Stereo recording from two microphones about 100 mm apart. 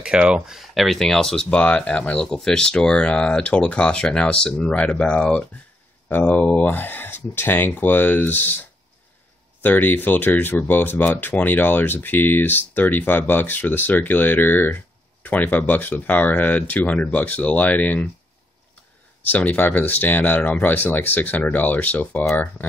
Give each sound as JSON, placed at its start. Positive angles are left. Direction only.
{"t": 0.0, "sound": "speech", "side_deg": -10}
{"t": 9.6, "sound": "speech", "side_deg": 20}
{"t": 19.2, "sound": "speech", "side_deg": 15}